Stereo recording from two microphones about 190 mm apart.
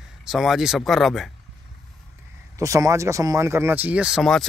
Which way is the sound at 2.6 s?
15° right (ahead or behind).